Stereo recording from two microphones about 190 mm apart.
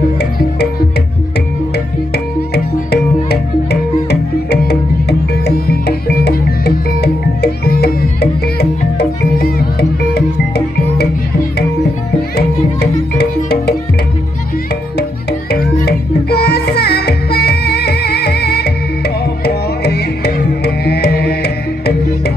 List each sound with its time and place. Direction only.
0.2 s music: 60° left (ahead or behind)
2.1 s music: 60° left (ahead or behind)
13.2 s music: 60° left (ahead or behind)
15.6 s music: 55° left (ahead or behind)